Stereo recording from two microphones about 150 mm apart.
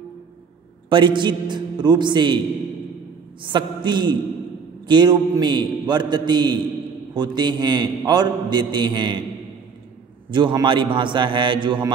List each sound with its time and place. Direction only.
0.8 s a man's voice: 35° right (ahead or behind)
3.4 s a man's voice: 30° right (ahead or behind)
10.3 s a man's voice: 30° right (ahead or behind)